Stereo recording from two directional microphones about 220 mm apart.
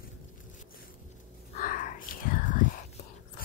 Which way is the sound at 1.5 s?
35° left (ahead or behind).